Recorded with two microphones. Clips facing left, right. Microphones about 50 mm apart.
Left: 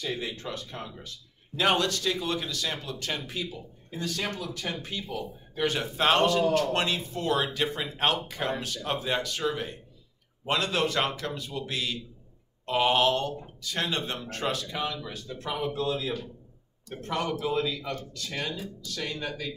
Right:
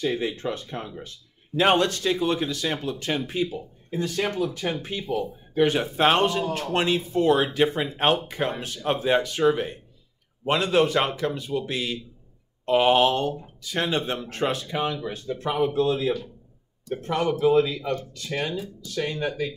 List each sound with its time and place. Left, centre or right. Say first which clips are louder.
0.0 s speech: right 7 dB; right